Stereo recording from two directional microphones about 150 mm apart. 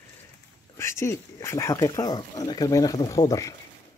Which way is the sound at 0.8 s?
20° left (ahead or behind).